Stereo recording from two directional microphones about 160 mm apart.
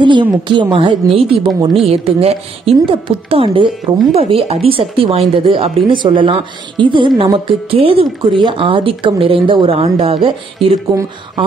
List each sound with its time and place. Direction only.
0.0 s a woman's voice: 30° right (ahead or behind)
10.9 s speech: 25° right (ahead or behind)